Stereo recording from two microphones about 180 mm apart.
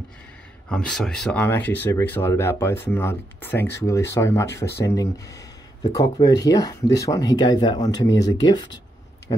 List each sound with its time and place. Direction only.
0.7 s speech: 5° left (ahead or behind); by 8.3 s 20° left (ahead or behind)